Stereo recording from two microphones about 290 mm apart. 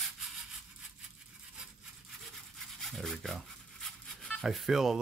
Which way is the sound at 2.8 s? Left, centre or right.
Centre.